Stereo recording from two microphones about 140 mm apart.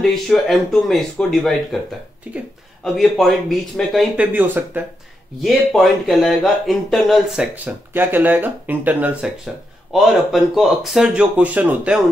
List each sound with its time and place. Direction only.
0.0 s speech: centre (ahead or behind)
2.3 s speech: 10° right (ahead or behind)
2.8 s speech: centre (ahead or behind)
4.2 s speech: 10° right (ahead or behind)
5.4 s speech: centre (ahead or behind)
7.5 s speech: 15° right (ahead or behind)